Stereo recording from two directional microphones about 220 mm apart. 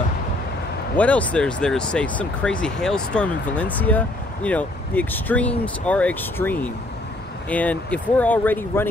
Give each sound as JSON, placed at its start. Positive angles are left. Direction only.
{"t": 0.9, "sound": "speech", "side_deg": 5}